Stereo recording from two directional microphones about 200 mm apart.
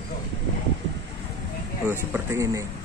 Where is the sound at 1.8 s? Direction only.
10° right (ahead or behind).